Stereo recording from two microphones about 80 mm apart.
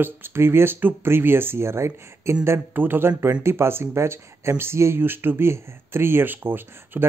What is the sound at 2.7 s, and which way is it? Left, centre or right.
Speech, right.